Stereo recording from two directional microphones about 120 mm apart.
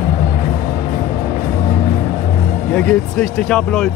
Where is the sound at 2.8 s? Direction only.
5° left (ahead or behind).